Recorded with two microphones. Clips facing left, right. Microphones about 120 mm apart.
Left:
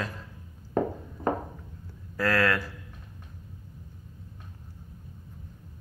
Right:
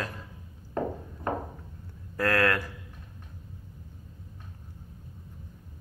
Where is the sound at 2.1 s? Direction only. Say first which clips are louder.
Even; 50° right (ahead or behind).